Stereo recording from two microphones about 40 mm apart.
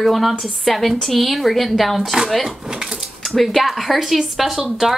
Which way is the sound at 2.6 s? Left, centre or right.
Centre.